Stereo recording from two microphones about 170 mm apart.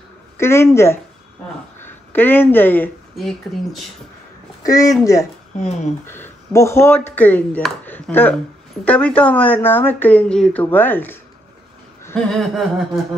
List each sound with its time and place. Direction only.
0.4 s speech: 15° left (ahead or behind)
3.2 s a sound: centre (ahead or behind)
4.6 s speech: 20° left (ahead or behind)
5.6 s speech: 40° left (ahead or behind)
6.0 s speech: 15° left (ahead or behind)
12.2 s a sound: centre (ahead or behind)